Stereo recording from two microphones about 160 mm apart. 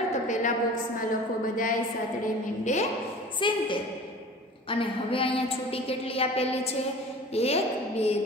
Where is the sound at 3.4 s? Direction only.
30° left (ahead or behind).